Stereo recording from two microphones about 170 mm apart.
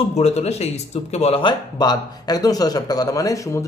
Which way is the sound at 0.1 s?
40° left (ahead or behind).